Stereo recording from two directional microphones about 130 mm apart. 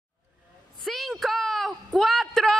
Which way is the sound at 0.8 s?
Centre (ahead or behind).